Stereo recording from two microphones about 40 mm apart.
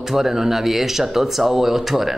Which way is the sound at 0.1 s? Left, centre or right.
Centre.